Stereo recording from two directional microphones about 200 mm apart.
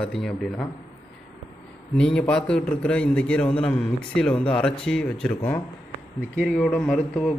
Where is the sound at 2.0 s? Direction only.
5° left (ahead or behind).